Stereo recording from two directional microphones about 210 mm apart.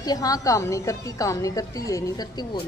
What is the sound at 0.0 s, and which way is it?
A woman's voice, 15° left (ahead or behind).